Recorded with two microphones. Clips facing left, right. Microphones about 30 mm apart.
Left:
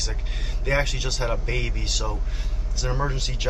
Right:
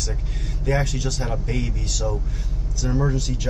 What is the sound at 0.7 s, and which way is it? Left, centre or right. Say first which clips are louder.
A man's voice: right 1 dB; left.